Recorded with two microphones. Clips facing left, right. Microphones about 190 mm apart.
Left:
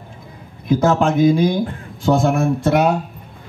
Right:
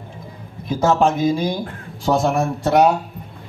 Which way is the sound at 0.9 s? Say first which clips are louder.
Left 3 dB; 55° left (ahead or behind).